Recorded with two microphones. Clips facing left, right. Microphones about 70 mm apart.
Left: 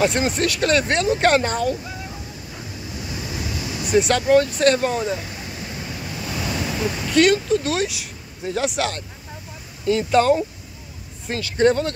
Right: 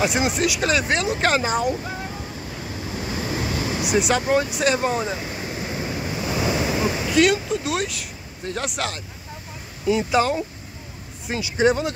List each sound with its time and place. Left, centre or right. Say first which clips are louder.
0.0 s speech: left 1 dB; centre
2.9 s vehicle: right 5 dB; right
3.9 s speech: left 4 dB; centre
5.2 s waves: right 4 dB; right
7.2 s speech: left 3 dB; centre